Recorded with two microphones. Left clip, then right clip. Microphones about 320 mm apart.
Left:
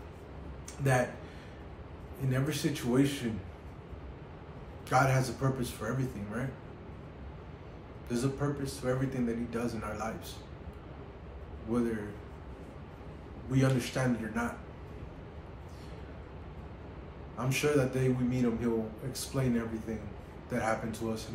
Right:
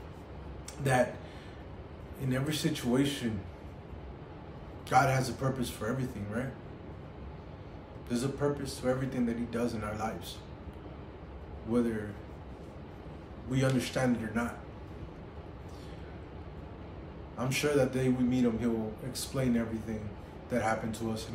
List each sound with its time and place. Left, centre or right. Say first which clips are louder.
0.8 s a man's voice: right 1 dB; centre
2.2 s a man's voice: even; centre
4.8 s a man's voice: right 1 dB; centre
8.1 s a man's voice: right 2 dB; centre
13.5 s a man's voice: even; centre
17.4 s a man's voice: right 1 dB; centre